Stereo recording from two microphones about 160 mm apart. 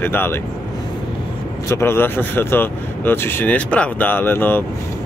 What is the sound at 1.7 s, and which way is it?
Speech, 15° left (ahead or behind).